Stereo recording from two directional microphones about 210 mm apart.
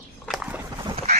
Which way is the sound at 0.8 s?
30° right (ahead or behind).